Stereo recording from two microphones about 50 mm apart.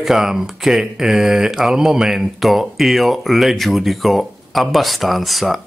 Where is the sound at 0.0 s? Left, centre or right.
Centre.